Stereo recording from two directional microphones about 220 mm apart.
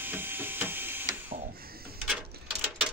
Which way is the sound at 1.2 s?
40° right (ahead or behind).